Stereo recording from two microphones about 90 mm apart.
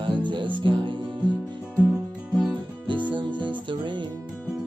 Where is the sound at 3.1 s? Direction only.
60° right (ahead or behind).